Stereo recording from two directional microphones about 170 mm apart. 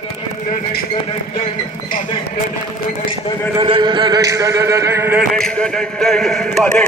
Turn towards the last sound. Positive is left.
turn(degrees=5)  # may be behind; listen again after turning